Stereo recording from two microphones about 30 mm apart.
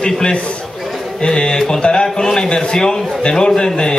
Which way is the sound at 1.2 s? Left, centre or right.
Left.